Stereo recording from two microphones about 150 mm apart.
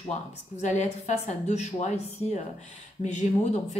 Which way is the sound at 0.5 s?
50° left (ahead or behind).